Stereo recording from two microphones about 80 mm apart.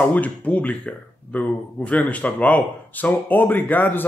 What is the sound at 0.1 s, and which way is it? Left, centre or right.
A man's voice, centre.